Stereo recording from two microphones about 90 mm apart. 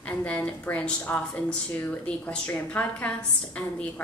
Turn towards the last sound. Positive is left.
turn(degrees=15)  # may be behind; listen again after turning